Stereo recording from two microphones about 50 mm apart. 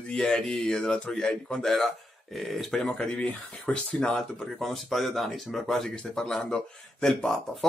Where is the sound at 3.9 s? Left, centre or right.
Centre.